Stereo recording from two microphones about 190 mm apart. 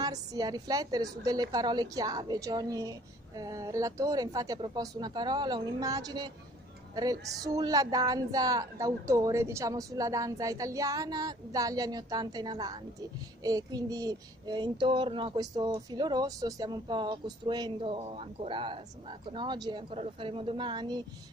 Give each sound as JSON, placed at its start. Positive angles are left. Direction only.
{"t": 0.0, "sound": "a woman's voice", "side_deg": -20}